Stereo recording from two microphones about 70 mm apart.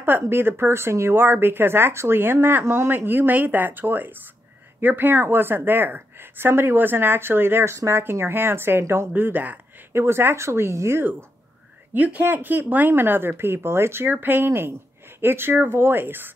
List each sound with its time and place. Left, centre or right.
0.0 s a woman's voice: right
7.7 s speech: right
8.0 s a woman's voice: right
9.1 s speech: right
9.9 s a woman's voice: right
11.9 s a woman's voice: right